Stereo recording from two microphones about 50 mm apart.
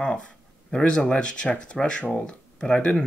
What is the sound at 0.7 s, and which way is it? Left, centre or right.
Speech, centre.